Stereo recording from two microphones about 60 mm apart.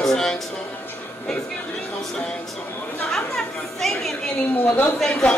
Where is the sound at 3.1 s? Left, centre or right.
Centre.